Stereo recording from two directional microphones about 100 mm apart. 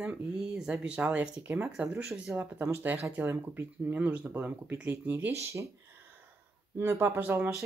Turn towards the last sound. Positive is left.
turn(degrees=-25)  # may be behind; listen again after turning